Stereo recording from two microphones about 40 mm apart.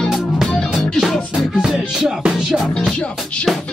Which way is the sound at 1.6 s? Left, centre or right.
Centre.